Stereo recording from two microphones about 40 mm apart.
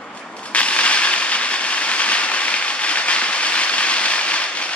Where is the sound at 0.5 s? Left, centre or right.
Left.